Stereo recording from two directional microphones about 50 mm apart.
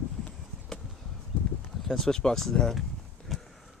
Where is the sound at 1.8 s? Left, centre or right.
Centre.